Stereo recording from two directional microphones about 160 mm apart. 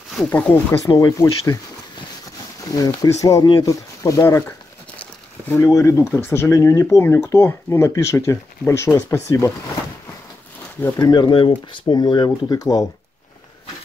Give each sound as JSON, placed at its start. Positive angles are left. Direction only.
{"t": 0.3, "sound": "speech", "side_deg": 10}
{"t": 0.8, "sound": "speech", "side_deg": 20}
{"t": 2.7, "sound": "speech", "side_deg": 20}
{"t": 3.6, "sound": "crumpling", "side_deg": 20}
{"t": 5.5, "sound": "speech", "side_deg": 20}
{"t": 11.0, "sound": "speech", "side_deg": 25}